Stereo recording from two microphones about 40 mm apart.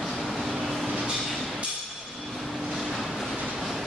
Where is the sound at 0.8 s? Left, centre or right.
Right.